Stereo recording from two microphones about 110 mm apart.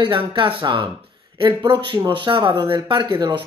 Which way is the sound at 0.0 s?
45° right (ahead or behind).